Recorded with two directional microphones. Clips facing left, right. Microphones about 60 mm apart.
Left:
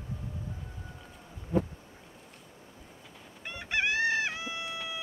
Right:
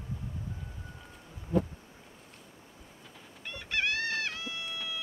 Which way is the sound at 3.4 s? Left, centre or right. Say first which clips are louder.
Left 2 dB; centre.